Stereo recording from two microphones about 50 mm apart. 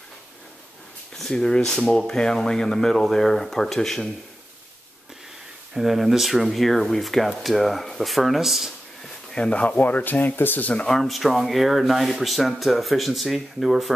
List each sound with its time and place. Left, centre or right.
1.1 s speech: centre
5.8 s speech: centre
9.3 s speech: left
10.9 s speech: centre